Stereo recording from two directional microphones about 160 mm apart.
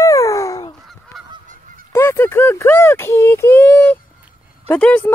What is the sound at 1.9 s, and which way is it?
Speech, 15° left (ahead or behind).